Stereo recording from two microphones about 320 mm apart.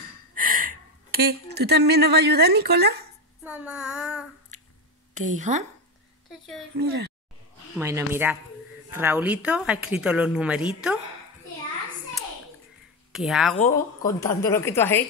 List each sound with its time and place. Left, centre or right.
0.3 s speech: right
3.4 s a woman's voice: centre
5.1 s speech: right
6.8 s speech: right
7.7 s a woman's voice: centre
13.1 s a woman's voice: centre